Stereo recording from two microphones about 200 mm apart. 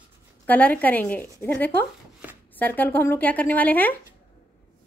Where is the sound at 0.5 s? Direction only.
10° left (ahead or behind).